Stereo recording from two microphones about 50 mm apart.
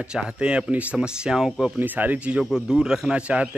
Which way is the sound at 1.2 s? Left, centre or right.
Centre.